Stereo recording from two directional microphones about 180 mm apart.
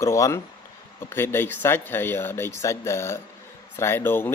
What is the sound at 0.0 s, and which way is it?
Speech, 15° left (ahead or behind).